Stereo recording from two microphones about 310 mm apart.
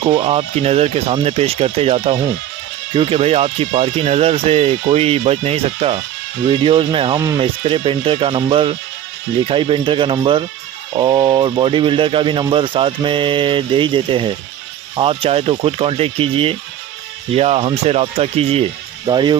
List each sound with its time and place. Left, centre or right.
0.0 s speech: centre